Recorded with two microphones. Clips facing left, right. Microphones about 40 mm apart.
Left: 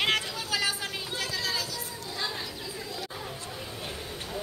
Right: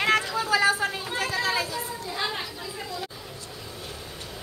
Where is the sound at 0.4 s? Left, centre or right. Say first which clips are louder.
Right 8 dB; right.